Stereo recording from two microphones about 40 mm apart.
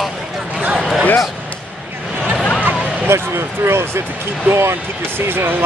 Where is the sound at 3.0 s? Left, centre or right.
Right.